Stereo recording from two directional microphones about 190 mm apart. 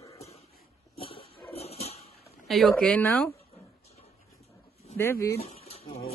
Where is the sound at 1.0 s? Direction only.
30° left (ahead or behind).